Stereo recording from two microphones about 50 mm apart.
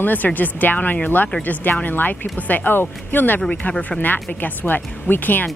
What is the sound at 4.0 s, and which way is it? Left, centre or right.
A woman's voice, left.